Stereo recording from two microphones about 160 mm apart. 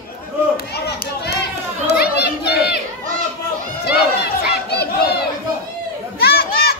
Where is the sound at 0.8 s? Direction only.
90° left.